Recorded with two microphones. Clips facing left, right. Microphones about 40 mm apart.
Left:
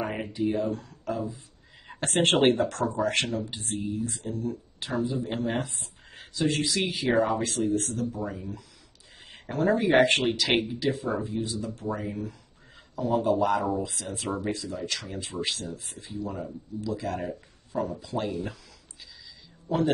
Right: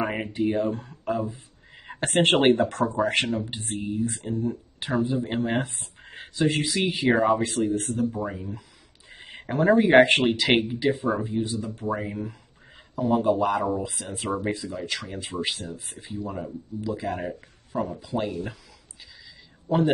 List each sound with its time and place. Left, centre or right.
0.3 s speech: right
1.9 s a sound: right
2.4 s speech: right
6.4 s speech: centre
7.9 s speech: right
9.1 s a sound: right
9.8 s speech: right
10.2 s speech: right
14.0 s speech: right; by 18.6 s centre